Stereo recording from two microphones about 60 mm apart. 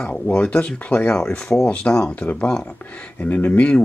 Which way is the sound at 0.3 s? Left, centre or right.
Left.